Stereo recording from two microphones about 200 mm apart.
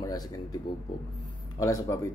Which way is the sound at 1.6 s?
15° left (ahead or behind).